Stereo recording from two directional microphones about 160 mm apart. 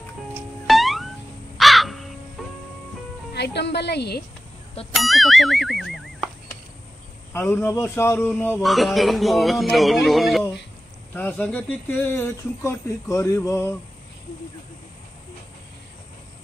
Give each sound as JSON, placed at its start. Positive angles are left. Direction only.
{"t": 0.7, "sound": "music", "side_deg": 0}
{"t": 1.6, "sound": "crow", "side_deg": 0}
{"t": 3.3, "sound": "speech", "side_deg": 90}
{"t": 4.9, "sound": "speech", "side_deg": 0}
{"t": 7.3, "sound": "speech", "side_deg": 15}
{"t": 8.6, "sound": "speech", "side_deg": 0}
{"t": 11.1, "sound": "speech", "side_deg": 10}